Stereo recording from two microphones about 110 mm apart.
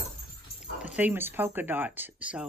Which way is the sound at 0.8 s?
15° right (ahead or behind).